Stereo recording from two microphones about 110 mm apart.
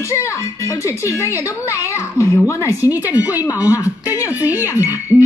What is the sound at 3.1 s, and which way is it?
Speech, 15° right (ahead or behind).